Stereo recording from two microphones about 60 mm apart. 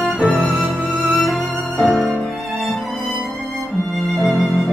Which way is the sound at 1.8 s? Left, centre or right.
Centre.